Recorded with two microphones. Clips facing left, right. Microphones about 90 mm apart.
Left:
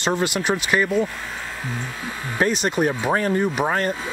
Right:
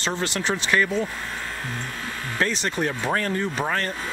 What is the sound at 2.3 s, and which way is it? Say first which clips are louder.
Speech: left 5 dB; 15° left (ahead or behind).